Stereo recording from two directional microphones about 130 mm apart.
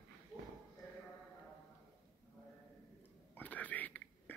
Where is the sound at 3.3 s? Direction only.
10° left (ahead or behind).